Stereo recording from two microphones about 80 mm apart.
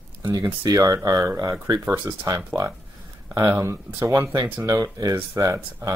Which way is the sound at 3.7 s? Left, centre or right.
Right.